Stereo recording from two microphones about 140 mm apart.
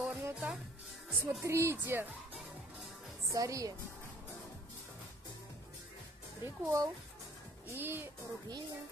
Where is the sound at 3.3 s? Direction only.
25° right (ahead or behind).